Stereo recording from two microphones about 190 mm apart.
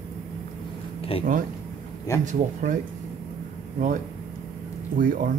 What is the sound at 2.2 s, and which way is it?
Speech, 40° right (ahead or behind).